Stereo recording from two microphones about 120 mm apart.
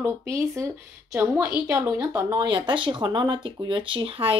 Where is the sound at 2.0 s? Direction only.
35° right (ahead or behind).